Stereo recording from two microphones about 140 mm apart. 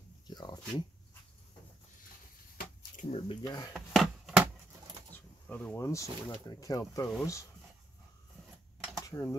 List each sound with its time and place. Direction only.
0.3 s speech: 30° left (ahead or behind)
3.1 s speech: 40° left (ahead or behind)
3.4 s speech: 25° left (ahead or behind)
3.7 s chopping: centre (ahead or behind)
5.5 s speech: 10° left (ahead or behind)
9.0 s speech: 25° left (ahead or behind)